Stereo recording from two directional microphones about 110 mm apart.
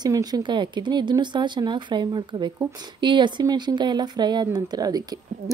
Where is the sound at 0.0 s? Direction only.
35° right (ahead or behind).